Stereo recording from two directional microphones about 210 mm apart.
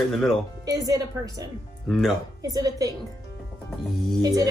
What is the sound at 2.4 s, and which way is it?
Speech, 15° right (ahead or behind).